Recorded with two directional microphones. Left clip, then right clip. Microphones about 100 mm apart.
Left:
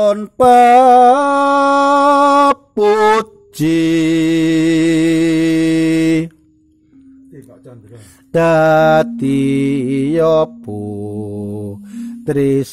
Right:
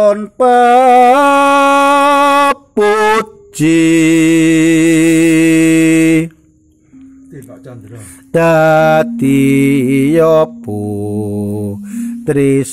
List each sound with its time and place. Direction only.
0.8 s humming: 25° left (ahead or behind)
2.8 s mantra: 25° left (ahead or behind)
8.3 s mantra: 20° left (ahead or behind)